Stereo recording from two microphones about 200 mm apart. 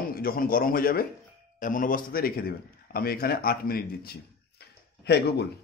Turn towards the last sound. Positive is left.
turn(degrees=60)  # may be behind; listen again after turning